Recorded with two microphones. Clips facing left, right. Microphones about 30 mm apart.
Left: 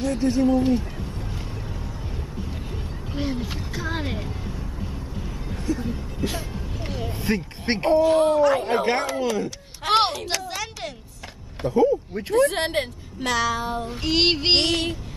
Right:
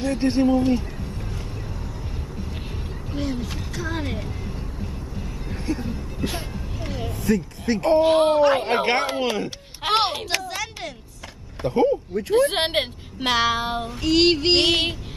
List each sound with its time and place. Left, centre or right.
0.0 s speech: right
0.5 s speech: centre
3.1 s speech: centre
5.5 s music: right
7.1 s speech: left
7.9 s speech: right
9.8 s speech: centre
10.4 s a sound: centre
11.6 s speech: right
12.1 s speech: centre
12.4 s speech: right
13.8 s speech: centre
14.7 s child singing: right